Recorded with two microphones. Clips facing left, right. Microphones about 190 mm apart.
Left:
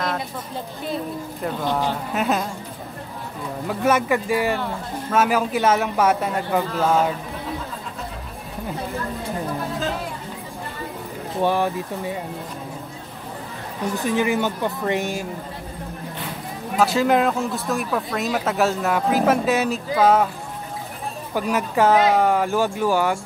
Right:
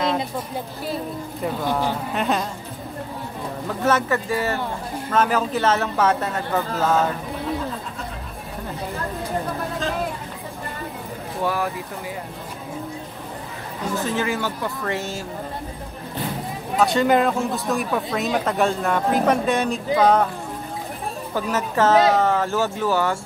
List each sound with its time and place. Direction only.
1.4 s speech: 10° right (ahead or behind)
2.1 s speech: 5° left (ahead or behind)
3.6 s a man's voice: 10° left (ahead or behind)
11.4 s speech: 25° left (ahead or behind)
13.9 s a man's voice: 15° left (ahead or behind)
16.7 s speech: centre (ahead or behind)
21.4 s a man's voice: 10° left (ahead or behind)